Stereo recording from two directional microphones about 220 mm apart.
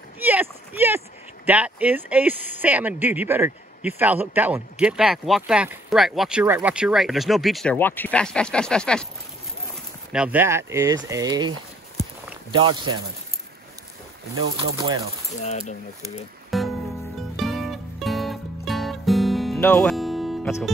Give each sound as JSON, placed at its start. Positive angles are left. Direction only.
{"t": 0.2, "sound": "speech", "side_deg": -10}
{"t": 10.1, "sound": "speech", "side_deg": -5}
{"t": 14.6, "sound": "speech", "side_deg": -20}
{"t": 15.3, "sound": "speech", "side_deg": 30}
{"t": 16.4, "sound": "music", "side_deg": 0}